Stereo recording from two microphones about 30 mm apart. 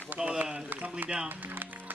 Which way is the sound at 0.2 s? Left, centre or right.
Right.